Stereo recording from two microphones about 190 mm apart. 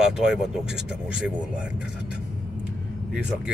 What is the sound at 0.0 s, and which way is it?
Speech, 5° right (ahead or behind).